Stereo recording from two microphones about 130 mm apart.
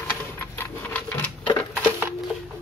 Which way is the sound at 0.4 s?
15° left (ahead or behind).